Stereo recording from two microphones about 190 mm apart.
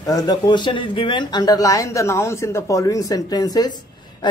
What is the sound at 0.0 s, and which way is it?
Speech, 20° left (ahead or behind).